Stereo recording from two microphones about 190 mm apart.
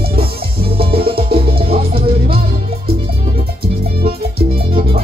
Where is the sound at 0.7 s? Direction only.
30° right (ahead or behind).